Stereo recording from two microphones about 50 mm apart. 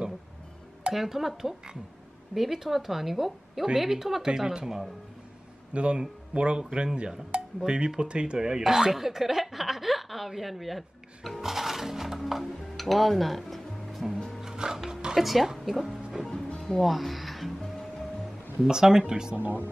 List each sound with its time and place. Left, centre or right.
0.9 s a woman's voice: centre
5.7 s speech: right; by 10.8 s centre
11.4 s music: centre
14.4 s music: centre
15.1 s speech: centre
16.4 s music: centre
16.8 s speech: centre
18.6 s speech: centre
19.3 s speech: right